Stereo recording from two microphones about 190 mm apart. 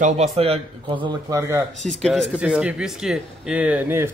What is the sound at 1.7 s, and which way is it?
A man's voice, centre (ahead or behind).